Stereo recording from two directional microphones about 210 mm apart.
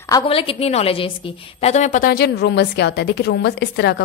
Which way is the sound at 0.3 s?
25° left (ahead or behind).